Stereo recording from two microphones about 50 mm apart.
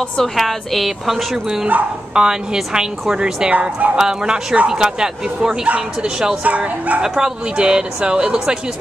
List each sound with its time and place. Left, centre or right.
0.4 s speech: centre
3.4 s speech: right
4.0 s speech: centre
6.4 s speech: right
7.0 s speech: centre